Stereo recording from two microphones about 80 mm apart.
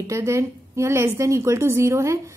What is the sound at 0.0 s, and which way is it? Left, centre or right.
A woman's voice, right.